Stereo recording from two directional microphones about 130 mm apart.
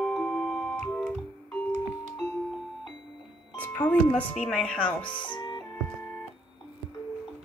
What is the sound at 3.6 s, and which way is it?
Music, 10° left (ahead or behind).